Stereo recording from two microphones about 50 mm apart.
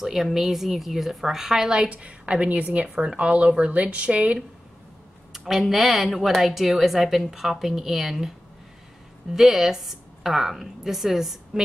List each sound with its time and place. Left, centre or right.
0.0 s a woman's voice: centre; by 4.4 s right
5.4 s a woman's voice: centre
9.3 s a woman's voice: centre